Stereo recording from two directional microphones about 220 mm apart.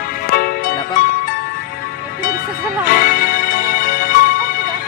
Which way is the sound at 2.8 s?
40° left (ahead or behind).